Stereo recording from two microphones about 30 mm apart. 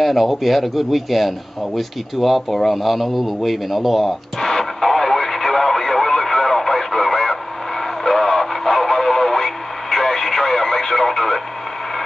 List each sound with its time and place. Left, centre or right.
0.0 s a man's voice: centre
4.4 s radio: centre